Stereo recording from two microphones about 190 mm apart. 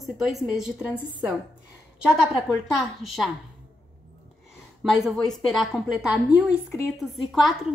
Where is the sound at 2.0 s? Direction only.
5° right (ahead or behind).